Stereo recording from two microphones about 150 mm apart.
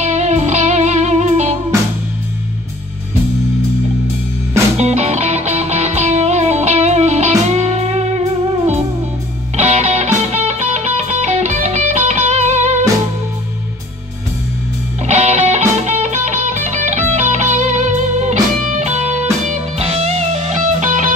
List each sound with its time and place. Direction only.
0.0 s music: 50° right (ahead or behind)
4.7 s music: 45° right (ahead or behind)
15.0 s music: 50° right (ahead or behind)